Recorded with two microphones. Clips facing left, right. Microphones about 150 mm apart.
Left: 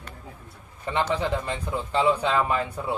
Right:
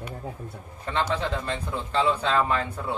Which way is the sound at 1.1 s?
15° left (ahead or behind).